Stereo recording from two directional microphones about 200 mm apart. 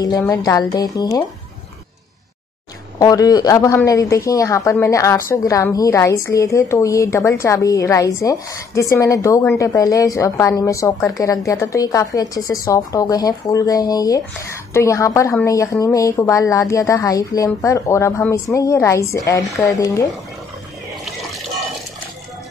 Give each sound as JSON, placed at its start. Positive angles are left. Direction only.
{"t": 0.2, "sound": "speech", "side_deg": 15}
{"t": 3.0, "sound": "speech", "side_deg": 15}